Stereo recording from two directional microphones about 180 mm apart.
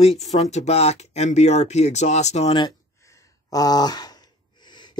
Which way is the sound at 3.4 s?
20° left (ahead or behind).